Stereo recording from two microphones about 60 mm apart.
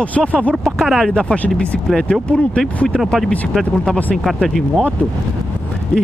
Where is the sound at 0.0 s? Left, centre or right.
Left.